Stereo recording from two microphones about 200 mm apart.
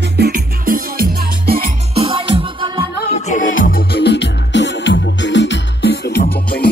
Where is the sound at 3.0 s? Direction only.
35° left (ahead or behind).